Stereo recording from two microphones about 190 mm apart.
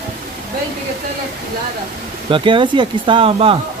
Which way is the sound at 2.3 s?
25° right (ahead or behind).